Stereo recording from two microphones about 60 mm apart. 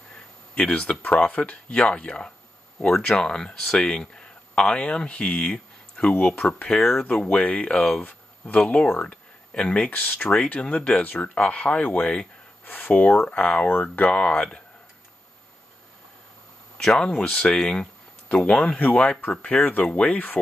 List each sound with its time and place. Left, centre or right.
0.1 s speech: centre
2.9 s speech: centre
6.8 s speech: centre
7.1 s speech: left
8.0 s speech: left
10.2 s speech: centre
12.6 s speech: left
13.3 s speech: centre
16.7 s speech: centre; by 20.3 s left